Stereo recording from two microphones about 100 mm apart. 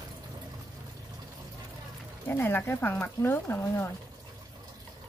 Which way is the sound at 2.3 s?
20° left (ahead or behind).